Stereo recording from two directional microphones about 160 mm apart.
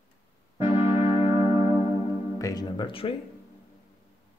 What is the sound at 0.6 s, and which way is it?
Music, 15° right (ahead or behind).